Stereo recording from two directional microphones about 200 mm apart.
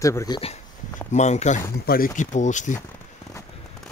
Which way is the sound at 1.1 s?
35° left (ahead or behind).